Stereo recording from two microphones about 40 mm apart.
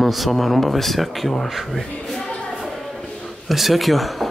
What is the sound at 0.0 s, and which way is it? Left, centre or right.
Speech, centre.